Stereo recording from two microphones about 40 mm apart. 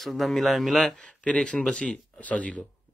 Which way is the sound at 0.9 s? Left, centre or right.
Left.